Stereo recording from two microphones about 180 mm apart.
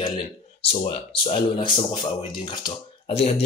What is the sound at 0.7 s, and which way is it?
Speech, 35° left (ahead or behind).